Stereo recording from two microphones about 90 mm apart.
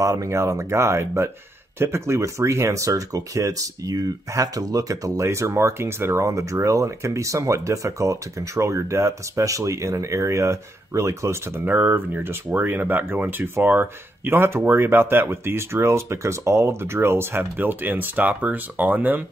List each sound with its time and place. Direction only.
0.0 s speech: 35° right (ahead or behind)
11.6 s speech: 20° right (ahead or behind)